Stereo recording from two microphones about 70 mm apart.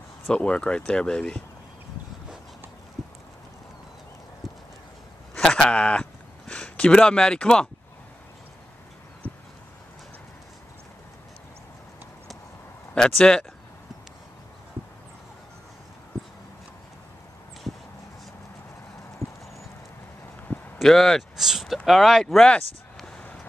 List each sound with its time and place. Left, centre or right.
0.3 s speech: centre
5.3 s a sound: centre
13.2 s speech: centre
19.2 s clip-clop: left
20.5 s a sound: centre
20.8 s speech: centre